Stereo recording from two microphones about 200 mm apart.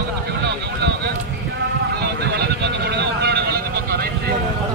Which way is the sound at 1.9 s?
55° right (ahead or behind).